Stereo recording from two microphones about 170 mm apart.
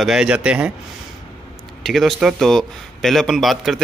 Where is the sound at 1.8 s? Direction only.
Centre (ahead or behind).